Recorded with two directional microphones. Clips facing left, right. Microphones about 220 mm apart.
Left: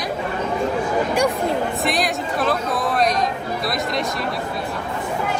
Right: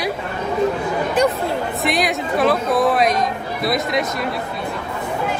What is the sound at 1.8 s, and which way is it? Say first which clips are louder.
Speech: right 2 dB; centre (ahead or behind).